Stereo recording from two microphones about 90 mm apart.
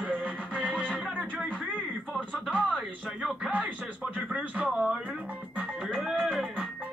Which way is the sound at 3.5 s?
15° right (ahead or behind).